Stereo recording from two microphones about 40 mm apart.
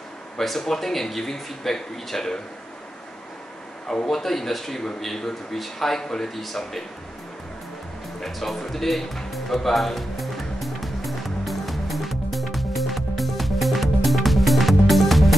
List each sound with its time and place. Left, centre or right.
0.4 s speech: centre
3.8 s a man's voice: centre
4.1 s speech: centre
8.2 s music: centre